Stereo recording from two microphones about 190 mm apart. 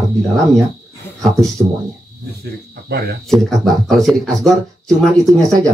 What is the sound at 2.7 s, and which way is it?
Speech, 55° right (ahead or behind).